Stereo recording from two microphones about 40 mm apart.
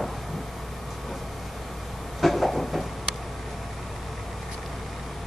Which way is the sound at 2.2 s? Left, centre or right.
Centre.